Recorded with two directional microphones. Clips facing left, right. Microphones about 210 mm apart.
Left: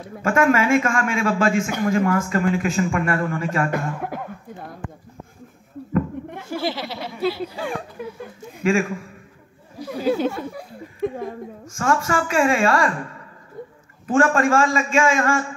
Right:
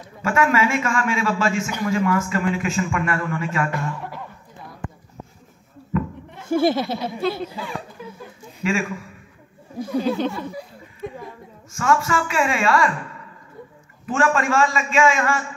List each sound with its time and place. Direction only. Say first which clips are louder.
0.2 s a man's voice: left 2 dB; 45° left (ahead or behind)
6.5 s speech: right 8 dB; 50° right (ahead or behind)
7.2 s speech: left 1 dB; 5° left (ahead or behind)
8.0 s a sound: left 5 dB; 60° left (ahead or behind)
8.6 s a man's voice: left 4 dB; 45° left (ahead or behind)
9.9 s speech: left 1 dB; 5° left (ahead or behind)
11.7 s a woman's voice: even; 40° left (ahead or behind)